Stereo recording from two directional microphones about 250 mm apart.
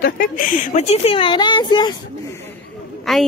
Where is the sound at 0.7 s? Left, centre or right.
Left.